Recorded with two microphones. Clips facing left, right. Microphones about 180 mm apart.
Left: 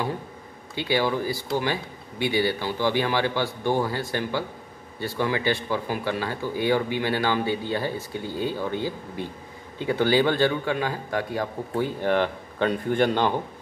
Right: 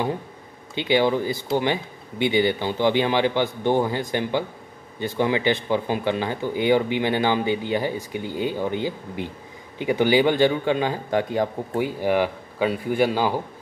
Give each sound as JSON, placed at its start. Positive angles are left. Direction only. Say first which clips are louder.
{"t": 0.7, "sound": "speech", "louder": "right 4 dB", "side_deg": -20}